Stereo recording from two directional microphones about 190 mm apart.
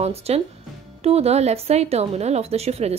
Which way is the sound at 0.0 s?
35° right (ahead or behind).